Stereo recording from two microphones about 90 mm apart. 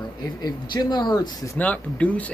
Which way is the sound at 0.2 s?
50° left (ahead or behind).